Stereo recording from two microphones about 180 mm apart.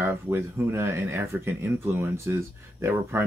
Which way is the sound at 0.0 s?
15° right (ahead or behind).